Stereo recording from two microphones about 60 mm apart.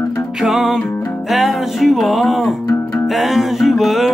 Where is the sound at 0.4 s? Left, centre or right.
Centre.